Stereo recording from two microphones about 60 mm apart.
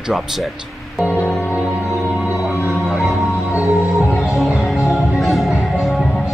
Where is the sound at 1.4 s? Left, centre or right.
Left.